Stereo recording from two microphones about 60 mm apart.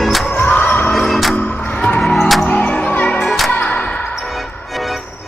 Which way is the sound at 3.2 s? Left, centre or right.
Centre.